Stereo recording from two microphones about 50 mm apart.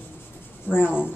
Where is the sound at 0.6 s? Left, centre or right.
Left.